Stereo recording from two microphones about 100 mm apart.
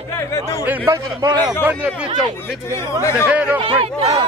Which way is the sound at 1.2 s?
40° right (ahead or behind).